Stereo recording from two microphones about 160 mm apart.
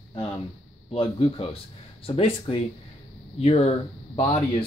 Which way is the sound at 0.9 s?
35° left (ahead or behind).